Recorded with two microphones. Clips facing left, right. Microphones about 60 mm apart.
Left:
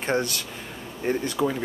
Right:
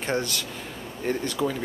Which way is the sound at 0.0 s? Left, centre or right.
Left.